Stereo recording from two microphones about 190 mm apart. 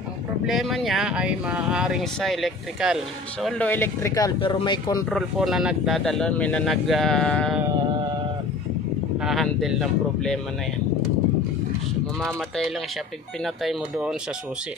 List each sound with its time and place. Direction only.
0.5 s speech: centre (ahead or behind); by 5.0 s 20° left (ahead or behind)
5.1 s speech: centre (ahead or behind)
9.2 s speech: centre (ahead or behind)
12.2 s speech: centre (ahead or behind)